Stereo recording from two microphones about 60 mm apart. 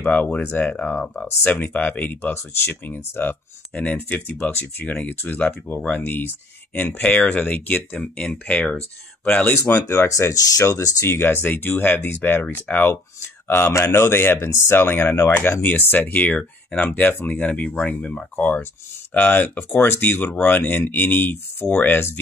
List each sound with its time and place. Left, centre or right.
0.0 s speech: left
1.4 s speech: left
2.3 s speech: left
3.8 s speech: left
9.7 s speech: left
10.0 s speech: left
11.1 s speech: left
12.9 s speech: left